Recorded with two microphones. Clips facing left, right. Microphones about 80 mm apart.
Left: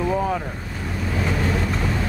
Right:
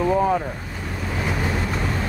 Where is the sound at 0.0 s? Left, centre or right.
Centre.